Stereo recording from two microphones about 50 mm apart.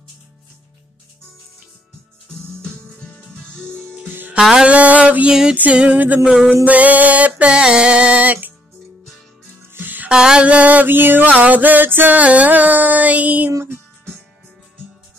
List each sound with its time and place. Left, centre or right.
2.3 s music: centre
4.0 s music: right
4.4 s music: centre
4.6 s music: right
8.2 s music: right
9.8 s music: right
10.0 s music: centre
10.4 s music: right
11.3 s music: right
12.2 s music: right